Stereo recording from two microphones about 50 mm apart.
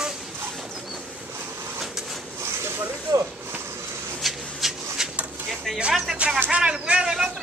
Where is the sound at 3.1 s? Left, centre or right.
Right.